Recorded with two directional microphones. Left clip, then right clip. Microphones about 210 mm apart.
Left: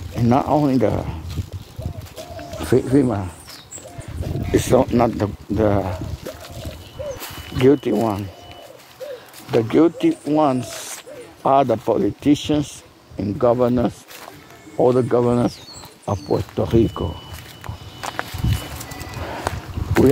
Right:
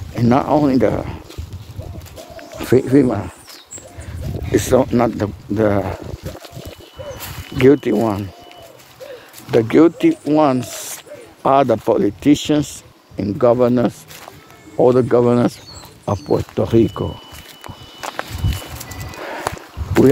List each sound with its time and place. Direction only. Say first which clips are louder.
0.1 s speech: right 3 dB; 20° right (ahead or behind)
2.6 s speech: right 4 dB; 25° right (ahead or behind)
4.5 s speech: right 2 dB; 10° right (ahead or behind)
7.2 s a sound: right 1 dB; 10° right (ahead or behind)
7.5 s speech: right 3 dB; 20° right (ahead or behind)
9.5 s speech: right 4 dB; 25° right (ahead or behind)
18.0 s walk: right 1 dB; 10° right (ahead or behind)
19.4 s walk: right 2 dB; 5° right (ahead or behind)